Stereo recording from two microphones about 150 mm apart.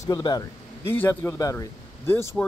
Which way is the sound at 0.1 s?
25° left (ahead or behind).